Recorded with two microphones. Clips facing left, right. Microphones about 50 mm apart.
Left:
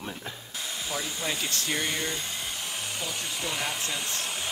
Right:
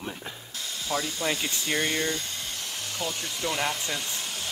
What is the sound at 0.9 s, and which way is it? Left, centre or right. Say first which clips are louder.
Speech: right 5 dB; centre.